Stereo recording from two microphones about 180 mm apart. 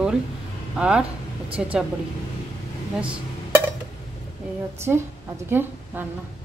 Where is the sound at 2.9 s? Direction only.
5° right (ahead or behind).